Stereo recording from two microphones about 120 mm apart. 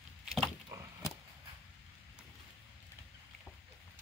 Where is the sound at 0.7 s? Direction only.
25° right (ahead or behind).